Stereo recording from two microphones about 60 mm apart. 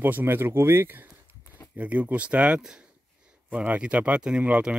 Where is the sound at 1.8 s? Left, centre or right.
Right.